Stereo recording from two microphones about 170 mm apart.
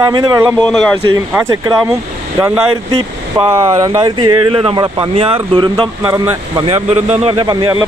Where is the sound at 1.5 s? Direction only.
15° right (ahead or behind).